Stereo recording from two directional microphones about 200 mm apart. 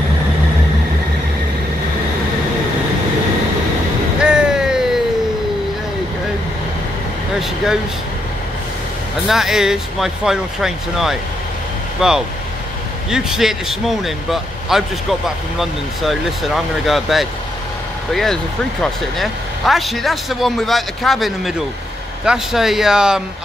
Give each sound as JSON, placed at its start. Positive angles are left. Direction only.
{"t": 4.2, "sound": "vehicle", "side_deg": -5}
{"t": 7.3, "sound": "vehicle", "side_deg": 0}
{"t": 9.3, "sound": "speech", "side_deg": 0}